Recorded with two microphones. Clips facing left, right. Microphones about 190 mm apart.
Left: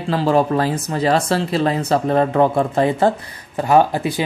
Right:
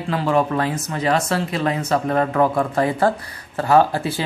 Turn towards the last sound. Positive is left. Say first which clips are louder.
# left 1 dB
turn(degrees=15)  # may be behind; listen again after turning